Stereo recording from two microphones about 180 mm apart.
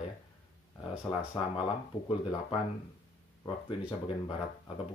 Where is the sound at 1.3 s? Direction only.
30° left (ahead or behind).